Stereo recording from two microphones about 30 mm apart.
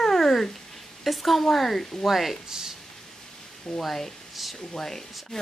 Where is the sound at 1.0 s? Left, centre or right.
Centre.